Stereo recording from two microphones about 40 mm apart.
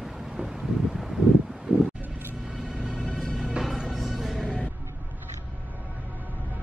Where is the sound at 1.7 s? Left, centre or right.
Right.